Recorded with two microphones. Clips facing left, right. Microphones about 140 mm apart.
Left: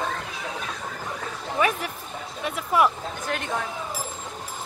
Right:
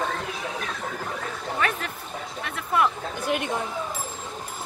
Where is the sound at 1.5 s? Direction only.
10° left (ahead or behind).